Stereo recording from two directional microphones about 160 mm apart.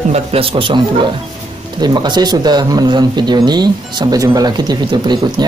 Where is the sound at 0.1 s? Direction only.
35° right (ahead or behind).